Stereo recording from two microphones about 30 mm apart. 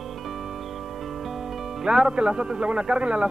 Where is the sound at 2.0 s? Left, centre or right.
Right.